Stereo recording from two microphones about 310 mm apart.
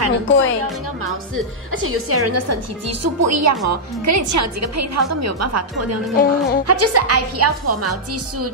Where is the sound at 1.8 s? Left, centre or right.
Right.